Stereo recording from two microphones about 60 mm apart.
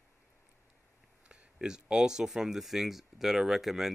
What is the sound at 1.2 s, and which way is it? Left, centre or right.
Speech, centre.